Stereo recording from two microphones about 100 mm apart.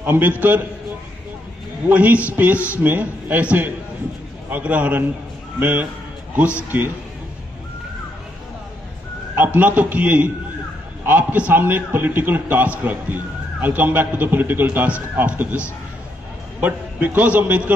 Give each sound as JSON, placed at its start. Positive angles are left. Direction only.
{"t": 0.0, "sound": "a man's voice", "side_deg": -20}
{"t": 1.9, "sound": "a man's voice", "side_deg": -15}
{"t": 9.4, "sound": "a man's voice", "side_deg": -15}
{"t": 16.6, "sound": "a man's voice", "side_deg": -15}